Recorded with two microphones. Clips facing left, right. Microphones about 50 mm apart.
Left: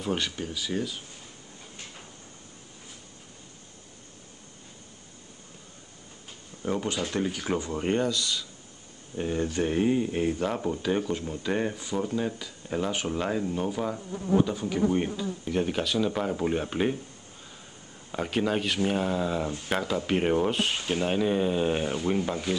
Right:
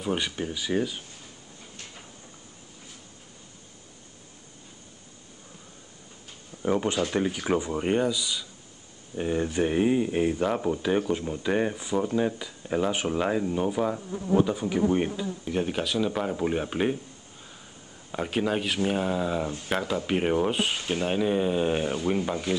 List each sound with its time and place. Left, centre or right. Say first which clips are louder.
0.0 s speech: right 1 dB; centre
6.6 s speech: right 4 dB; centre
18.1 s speech: even; centre